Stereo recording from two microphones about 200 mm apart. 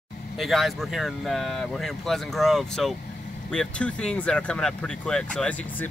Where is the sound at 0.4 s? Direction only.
Centre (ahead or behind).